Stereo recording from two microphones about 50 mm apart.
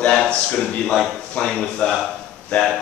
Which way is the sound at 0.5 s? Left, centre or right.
Centre.